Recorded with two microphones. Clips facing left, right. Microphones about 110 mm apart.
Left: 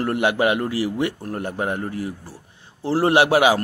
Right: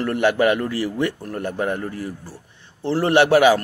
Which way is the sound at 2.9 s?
30° left (ahead or behind).